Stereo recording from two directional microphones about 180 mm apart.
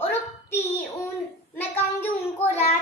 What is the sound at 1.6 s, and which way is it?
Child singing, 10° left (ahead or behind).